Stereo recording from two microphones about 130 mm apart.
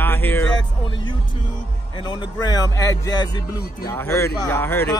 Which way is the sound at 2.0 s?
35° left (ahead or behind).